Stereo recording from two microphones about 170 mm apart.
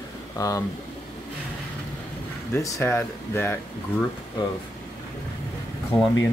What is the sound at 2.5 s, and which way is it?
Speech, 15° left (ahead or behind).